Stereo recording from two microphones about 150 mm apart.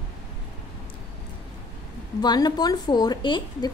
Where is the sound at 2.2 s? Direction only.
30° left (ahead or behind).